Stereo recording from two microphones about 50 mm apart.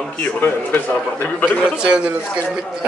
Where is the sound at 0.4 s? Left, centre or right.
Left.